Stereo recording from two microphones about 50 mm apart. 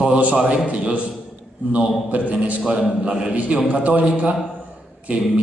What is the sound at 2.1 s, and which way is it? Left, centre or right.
Speech, right.